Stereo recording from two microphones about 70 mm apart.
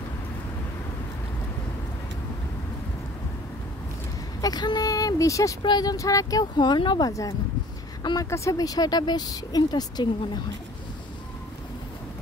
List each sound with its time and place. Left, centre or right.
4.4 s speech: left
5.6 s speech: left
5.9 s speech: left
6.6 s speech: left
7.1 s speech: left
8.0 s speech: left
8.3 s speech: left